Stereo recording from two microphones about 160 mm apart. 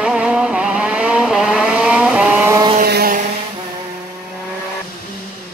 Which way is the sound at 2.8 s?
75° right (ahead or behind).